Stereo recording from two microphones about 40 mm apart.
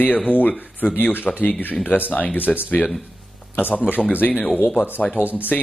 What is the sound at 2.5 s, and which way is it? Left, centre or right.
Speech, centre.